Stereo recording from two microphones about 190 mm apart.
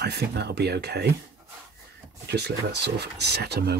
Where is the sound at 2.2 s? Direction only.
60° right (ahead or behind).